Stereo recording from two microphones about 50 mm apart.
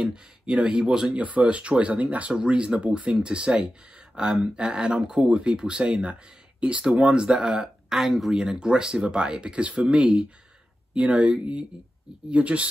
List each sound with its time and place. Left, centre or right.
0.0 s speech: centre
1.1 s speech: right
7.6 s speech: centre
8.4 s speech: centre